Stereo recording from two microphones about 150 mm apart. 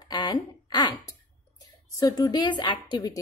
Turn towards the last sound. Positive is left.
turn(degrees=25)  # may be behind; listen again after turning